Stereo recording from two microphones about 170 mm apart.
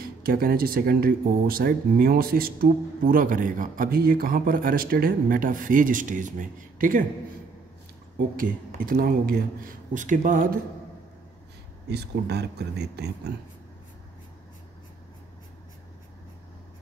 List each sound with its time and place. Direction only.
0.2 s speech: 60° right (ahead or behind)
8.4 s speech: 55° right (ahead or behind)
11.9 s speech: 75° right (ahead or behind)